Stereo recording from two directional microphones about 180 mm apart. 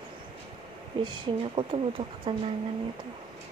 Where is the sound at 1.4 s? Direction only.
30° right (ahead or behind).